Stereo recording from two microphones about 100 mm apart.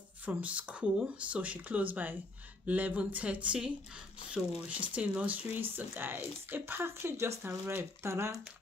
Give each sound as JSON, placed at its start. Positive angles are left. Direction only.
{"t": 0.2, "sound": "speech", "side_deg": -15}